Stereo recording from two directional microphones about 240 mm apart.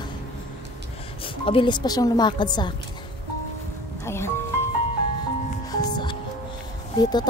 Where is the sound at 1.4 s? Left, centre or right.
Left.